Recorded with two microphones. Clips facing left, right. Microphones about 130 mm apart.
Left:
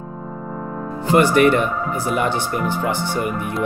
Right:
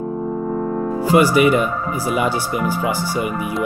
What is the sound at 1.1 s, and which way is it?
Speech, 5° right (ahead or behind).